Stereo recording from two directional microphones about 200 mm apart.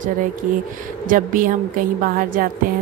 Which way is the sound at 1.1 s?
45° right (ahead or behind).